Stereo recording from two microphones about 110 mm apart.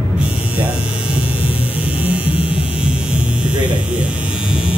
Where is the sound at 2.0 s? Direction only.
60° left (ahead or behind).